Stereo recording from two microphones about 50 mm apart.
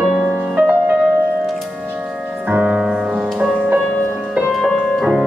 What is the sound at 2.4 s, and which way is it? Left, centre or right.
Music, right.